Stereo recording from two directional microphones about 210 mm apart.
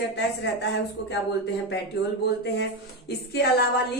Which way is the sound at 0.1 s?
55° left (ahead or behind).